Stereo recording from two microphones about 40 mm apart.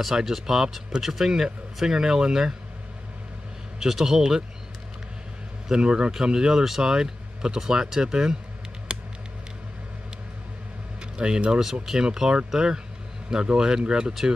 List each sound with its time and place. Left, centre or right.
0.2 s speech: centre
3.8 s speech: centre
5.7 s speech: right
8.9 s a sound: right
11.1 s speech: right